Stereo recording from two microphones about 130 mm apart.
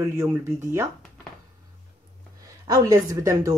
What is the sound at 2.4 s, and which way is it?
A woman's voice, 30° right (ahead or behind).